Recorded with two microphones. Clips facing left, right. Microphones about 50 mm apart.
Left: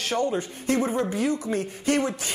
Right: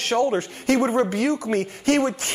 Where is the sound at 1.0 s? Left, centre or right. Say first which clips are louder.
Right 4 dB; right.